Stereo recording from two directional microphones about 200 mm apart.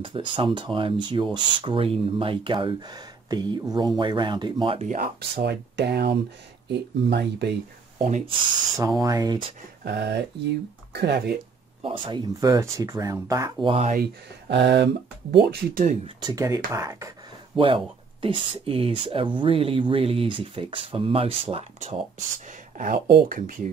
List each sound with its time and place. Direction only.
0.0 s speech: 25° right (ahead or behind)
4.8 s speech: 40° right (ahead or behind)
5.3 s speech: 55° right (ahead or behind)
8.0 s speech: 35° right (ahead or behind)
9.0 s speech: 15° right (ahead or behind)
9.8 s speech: 55° right (ahead or behind)
11.8 s speech: 25° right (ahead or behind)
13.7 s speech: 30° right (ahead or behind)
14.5 s speech: 55° right (ahead or behind)
15.3 s speech: 45° right (ahead or behind)
16.2 s speech: 20° right (ahead or behind)
22.8 s speech: 45° right (ahead or behind)